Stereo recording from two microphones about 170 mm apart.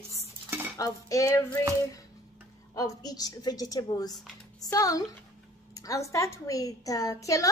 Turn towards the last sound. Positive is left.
turn(degrees=20)  # may be behind; listen again after turning